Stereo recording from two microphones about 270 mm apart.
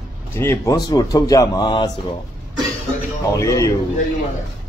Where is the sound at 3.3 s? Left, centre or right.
Centre.